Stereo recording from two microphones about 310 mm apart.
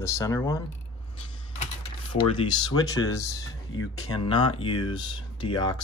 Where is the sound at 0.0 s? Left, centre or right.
Centre.